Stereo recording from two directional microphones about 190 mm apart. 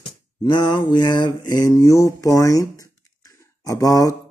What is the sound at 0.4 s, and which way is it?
Speech, 20° left (ahead or behind).